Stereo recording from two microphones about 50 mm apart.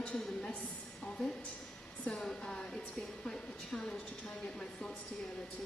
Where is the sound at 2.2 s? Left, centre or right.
Centre.